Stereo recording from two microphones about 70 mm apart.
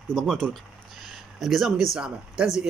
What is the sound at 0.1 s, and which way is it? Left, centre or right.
Speech, centre.